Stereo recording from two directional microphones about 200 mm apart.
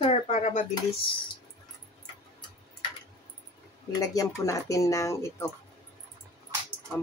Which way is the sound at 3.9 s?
15° left (ahead or behind).